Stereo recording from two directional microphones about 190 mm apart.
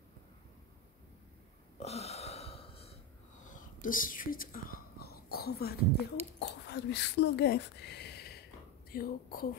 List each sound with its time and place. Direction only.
1.8 s a sound: 35° left (ahead or behind)
3.4 s whispering: 45° left (ahead or behind)
6.4 s a woman's voice: 60° left (ahead or behind)